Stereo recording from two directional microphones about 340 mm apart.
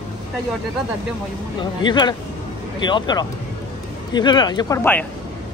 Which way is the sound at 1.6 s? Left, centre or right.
Centre.